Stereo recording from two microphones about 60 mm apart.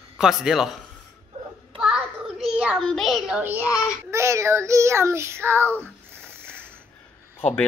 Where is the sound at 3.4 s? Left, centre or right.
Right.